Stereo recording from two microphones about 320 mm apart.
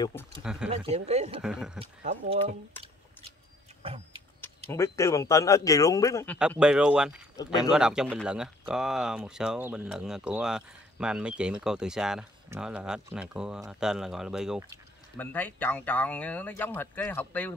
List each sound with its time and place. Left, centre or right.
0.0 s speech: centre
0.7 s speech: centre
1.4 s speech: centre
1.8 s speech: centre
3.8 s vehicle: centre
4.6 s speech: centre
6.3 s speech: centre